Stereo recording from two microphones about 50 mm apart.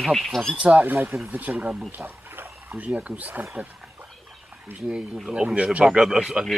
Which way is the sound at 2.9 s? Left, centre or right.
Right.